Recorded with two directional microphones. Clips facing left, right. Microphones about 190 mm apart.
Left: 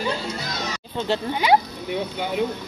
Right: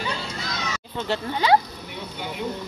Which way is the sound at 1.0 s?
20° left (ahead or behind).